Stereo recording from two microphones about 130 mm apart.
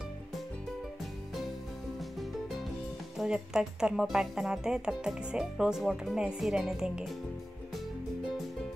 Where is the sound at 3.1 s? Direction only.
5° right (ahead or behind).